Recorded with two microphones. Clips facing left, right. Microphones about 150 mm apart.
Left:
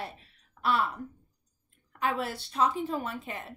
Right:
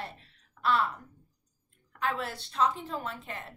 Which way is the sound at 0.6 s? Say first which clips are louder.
Even; 20° left (ahead or behind).